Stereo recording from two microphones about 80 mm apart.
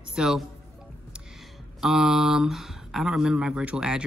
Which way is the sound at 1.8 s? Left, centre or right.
Centre.